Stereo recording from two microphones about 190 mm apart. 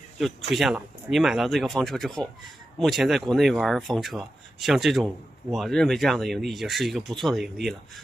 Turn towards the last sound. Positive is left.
turn(degrees=0)  # may be behind; listen again after turning